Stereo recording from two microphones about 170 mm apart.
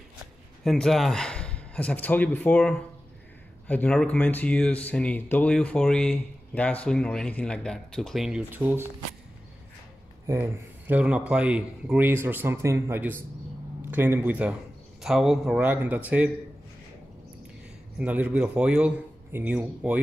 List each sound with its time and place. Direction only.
0.7 s speech: centre (ahead or behind)
10.2 s speech: 15° right (ahead or behind)
17.9 s speech: 10° right (ahead or behind)